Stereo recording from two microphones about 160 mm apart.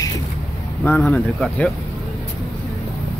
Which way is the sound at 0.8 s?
10° left (ahead or behind).